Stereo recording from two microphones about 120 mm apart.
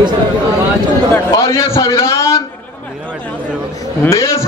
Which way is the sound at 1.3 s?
25° left (ahead or behind).